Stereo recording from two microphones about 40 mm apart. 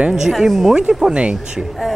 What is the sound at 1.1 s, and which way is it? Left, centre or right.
Speech, right.